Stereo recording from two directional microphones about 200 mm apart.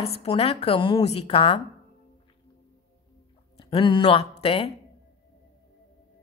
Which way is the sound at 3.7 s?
25° left (ahead or behind).